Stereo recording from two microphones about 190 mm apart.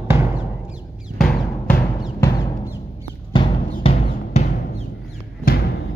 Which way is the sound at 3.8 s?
35° left (ahead or behind).